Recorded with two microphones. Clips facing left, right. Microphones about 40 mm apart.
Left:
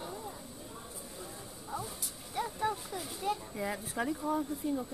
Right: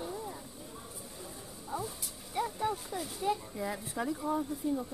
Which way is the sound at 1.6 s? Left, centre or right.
Centre.